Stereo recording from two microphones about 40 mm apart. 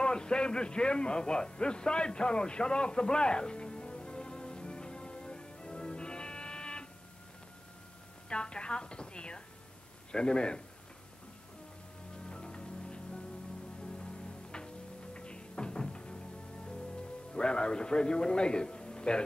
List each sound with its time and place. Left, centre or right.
0.0 s a sound: left
8.3 s a sound: left
10.1 s a man's voice: left
12.3 s music: left
15.1 s music: left
17.3 s a man's voice: left